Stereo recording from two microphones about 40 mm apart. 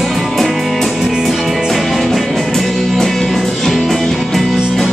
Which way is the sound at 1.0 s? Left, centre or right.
Centre.